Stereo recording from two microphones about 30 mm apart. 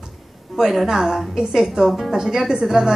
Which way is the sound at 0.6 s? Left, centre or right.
Centre.